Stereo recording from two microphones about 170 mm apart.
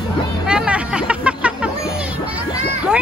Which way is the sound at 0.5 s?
5° right (ahead or behind).